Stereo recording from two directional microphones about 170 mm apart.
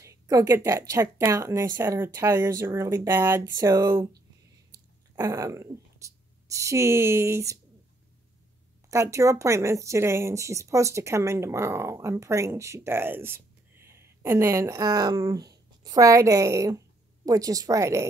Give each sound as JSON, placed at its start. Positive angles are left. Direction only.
{"t": 0.0, "sound": "speech", "side_deg": -20}
{"t": 8.9, "sound": "speech", "side_deg": -15}